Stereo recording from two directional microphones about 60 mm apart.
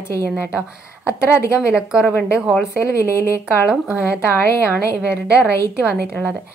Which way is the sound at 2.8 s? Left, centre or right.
Left.